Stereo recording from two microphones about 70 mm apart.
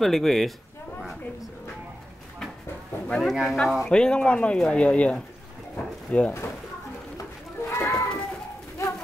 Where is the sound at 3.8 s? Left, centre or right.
Centre.